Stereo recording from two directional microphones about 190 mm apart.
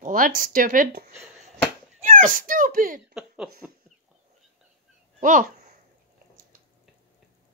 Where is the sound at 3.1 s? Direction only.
5° right (ahead or behind).